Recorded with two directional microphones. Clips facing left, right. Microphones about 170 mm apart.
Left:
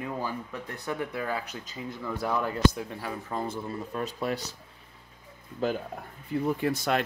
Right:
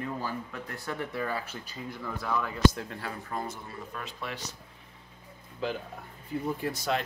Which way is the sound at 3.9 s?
40° left (ahead or behind).